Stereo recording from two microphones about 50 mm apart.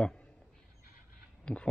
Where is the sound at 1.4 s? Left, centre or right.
Left.